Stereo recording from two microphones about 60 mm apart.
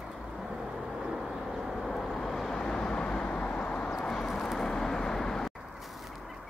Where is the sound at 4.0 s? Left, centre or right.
Centre.